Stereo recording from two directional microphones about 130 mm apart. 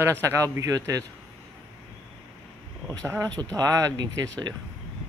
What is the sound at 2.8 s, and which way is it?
Speech, 25° right (ahead or behind).